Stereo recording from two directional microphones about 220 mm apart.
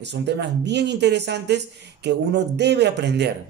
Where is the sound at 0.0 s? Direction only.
50° right (ahead or behind).